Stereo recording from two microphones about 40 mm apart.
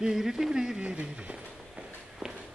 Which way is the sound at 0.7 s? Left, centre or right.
Right.